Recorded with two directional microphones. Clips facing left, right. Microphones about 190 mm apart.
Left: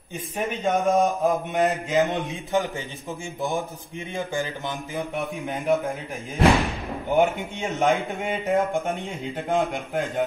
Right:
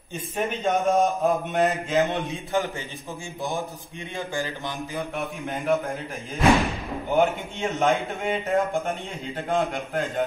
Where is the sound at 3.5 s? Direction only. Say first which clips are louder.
Even; centre (ahead or behind).